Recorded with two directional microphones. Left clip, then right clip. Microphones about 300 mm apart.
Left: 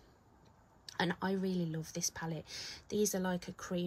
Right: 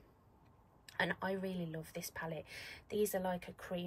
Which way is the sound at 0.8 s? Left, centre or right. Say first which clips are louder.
Left 1 dB; centre.